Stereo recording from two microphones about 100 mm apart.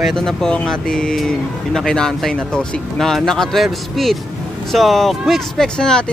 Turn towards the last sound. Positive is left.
turn(degrees=5)  # may be behind; listen again after turning